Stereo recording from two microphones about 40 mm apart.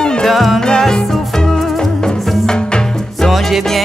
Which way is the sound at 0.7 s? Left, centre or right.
Centre.